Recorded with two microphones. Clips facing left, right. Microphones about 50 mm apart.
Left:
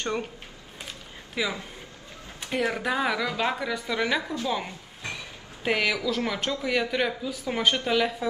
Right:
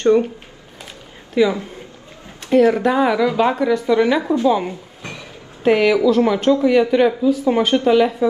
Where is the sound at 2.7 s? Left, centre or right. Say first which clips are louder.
Right 10 dB; centre.